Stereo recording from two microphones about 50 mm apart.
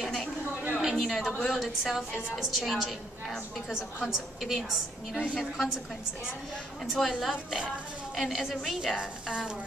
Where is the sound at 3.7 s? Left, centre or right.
Centre.